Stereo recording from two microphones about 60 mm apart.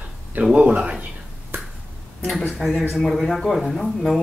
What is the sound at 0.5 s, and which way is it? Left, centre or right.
Speech, centre.